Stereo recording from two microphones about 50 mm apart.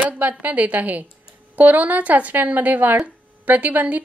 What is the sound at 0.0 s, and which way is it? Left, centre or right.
Speech, right.